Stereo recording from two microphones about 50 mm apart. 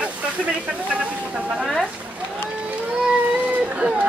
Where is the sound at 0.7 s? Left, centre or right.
Right.